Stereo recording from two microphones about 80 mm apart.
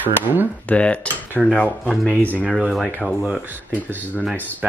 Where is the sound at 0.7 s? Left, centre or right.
Centre.